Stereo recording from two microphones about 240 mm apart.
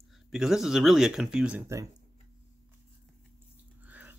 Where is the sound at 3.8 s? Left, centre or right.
Centre.